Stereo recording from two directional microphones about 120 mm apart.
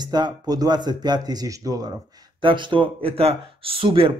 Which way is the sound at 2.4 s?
45° right (ahead or behind).